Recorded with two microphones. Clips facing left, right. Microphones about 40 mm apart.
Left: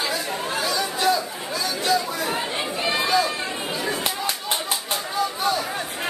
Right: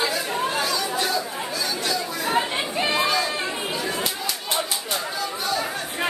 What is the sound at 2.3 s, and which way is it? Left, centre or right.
Chatter, centre.